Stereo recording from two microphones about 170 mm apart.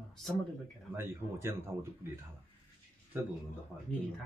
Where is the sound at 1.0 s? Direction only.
15° right (ahead or behind).